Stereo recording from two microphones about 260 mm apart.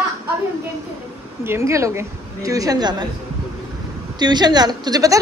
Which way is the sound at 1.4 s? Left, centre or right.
Centre.